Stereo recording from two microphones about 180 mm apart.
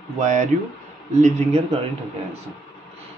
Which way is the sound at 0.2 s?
40° right (ahead or behind).